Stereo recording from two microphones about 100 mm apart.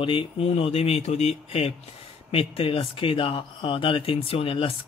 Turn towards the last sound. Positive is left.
turn(degrees=65)  # may be behind; listen again after turning